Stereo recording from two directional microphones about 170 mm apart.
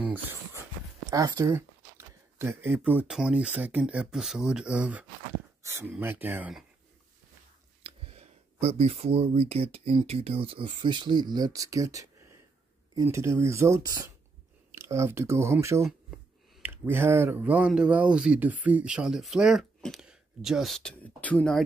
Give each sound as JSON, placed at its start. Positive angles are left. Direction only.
{"t": 0.0, "sound": "speech", "side_deg": -10}
{"t": 7.8, "sound": "speech", "side_deg": -35}